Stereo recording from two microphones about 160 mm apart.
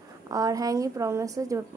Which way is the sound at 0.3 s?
20° right (ahead or behind).